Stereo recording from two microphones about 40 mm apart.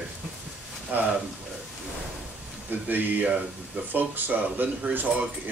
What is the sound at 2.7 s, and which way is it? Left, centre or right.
Speech, right.